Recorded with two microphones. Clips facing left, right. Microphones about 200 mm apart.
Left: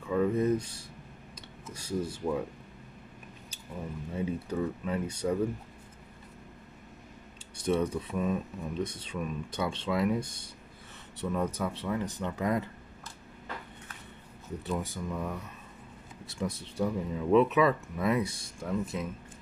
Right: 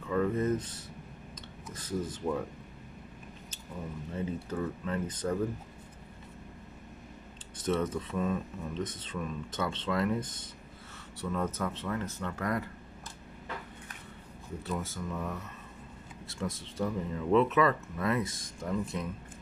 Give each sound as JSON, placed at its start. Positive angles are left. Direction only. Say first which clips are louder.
{"t": 0.1, "sound": "speech", "louder": "left 2 dB", "side_deg": 10}
{"t": 4.1, "sound": "speech", "louder": "left 3 dB", "side_deg": 10}
{"t": 7.5, "sound": "speech", "louder": "left 2 dB", "side_deg": 15}
{"t": 14.6, "sound": "speech", "louder": "left 2 dB", "side_deg": 15}